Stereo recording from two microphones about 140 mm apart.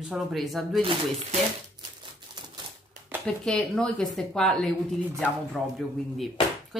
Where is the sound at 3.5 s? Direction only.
5° left (ahead or behind).